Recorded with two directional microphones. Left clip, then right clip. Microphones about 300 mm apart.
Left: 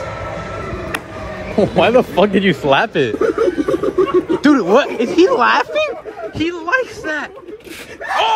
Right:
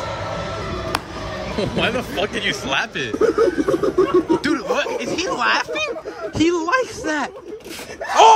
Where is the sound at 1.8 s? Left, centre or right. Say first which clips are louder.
Left 10 dB; centre.